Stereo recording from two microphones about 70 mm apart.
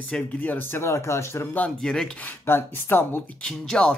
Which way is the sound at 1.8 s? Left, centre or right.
Centre.